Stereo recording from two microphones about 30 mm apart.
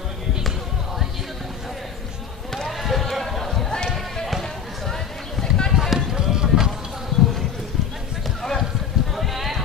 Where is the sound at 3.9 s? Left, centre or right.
Centre.